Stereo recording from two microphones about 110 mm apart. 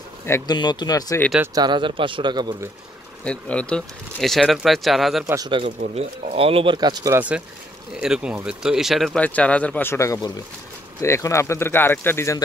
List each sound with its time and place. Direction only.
0.5 s speech: 40° left (ahead or behind)
1.5 s speech: 40° right (ahead or behind)
3.3 s speech: 10° left (ahead or behind)
5.2 s speech: 30° right (ahead or behind)
5.5 s speech: 55° right (ahead or behind)
6.8 s speech: 35° right (ahead or behind)
7.2 s speech: 10° right (ahead or behind)
9.2 s speech: 10° left (ahead or behind)